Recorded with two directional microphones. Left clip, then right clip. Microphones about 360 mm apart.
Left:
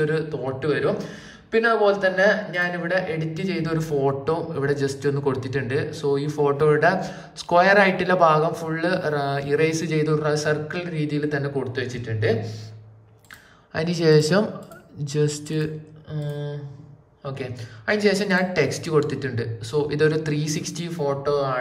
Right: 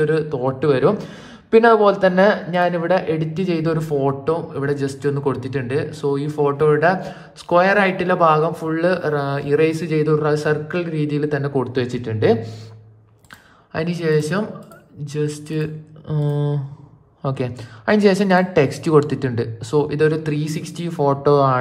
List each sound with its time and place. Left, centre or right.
0.0 s a man's voice: centre
13.7 s a man's voice: centre
17.3 s a man's voice: centre